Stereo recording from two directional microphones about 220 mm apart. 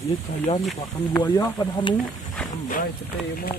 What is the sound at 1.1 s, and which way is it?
Speech, 15° left (ahead or behind).